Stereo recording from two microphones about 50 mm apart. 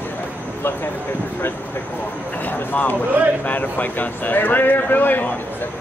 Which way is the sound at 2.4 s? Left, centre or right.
Left.